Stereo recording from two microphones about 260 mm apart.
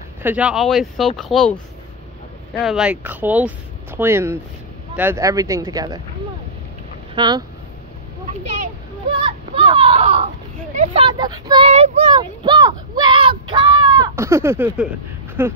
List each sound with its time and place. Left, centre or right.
0.2 s speech: centre
7.2 s speech: centre
9.1 s a child's voice: centre